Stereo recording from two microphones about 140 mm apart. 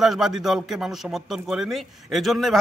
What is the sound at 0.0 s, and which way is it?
A man's voice, centre (ahead or behind).